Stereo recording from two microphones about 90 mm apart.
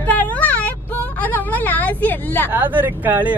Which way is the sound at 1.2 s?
20° left (ahead or behind).